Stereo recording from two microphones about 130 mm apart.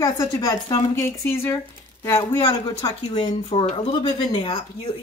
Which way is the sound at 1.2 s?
15° left (ahead or behind).